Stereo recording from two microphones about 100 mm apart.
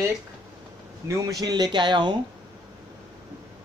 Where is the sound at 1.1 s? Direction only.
40° right (ahead or behind).